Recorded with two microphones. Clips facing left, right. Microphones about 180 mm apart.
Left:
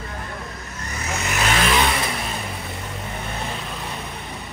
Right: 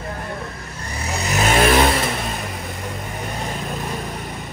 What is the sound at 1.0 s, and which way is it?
Vehicle, 35° right (ahead or behind).